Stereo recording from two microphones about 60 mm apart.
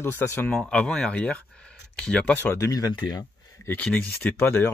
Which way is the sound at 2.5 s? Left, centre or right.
Left.